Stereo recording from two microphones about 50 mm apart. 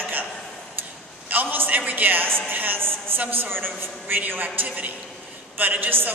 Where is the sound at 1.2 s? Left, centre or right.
Right.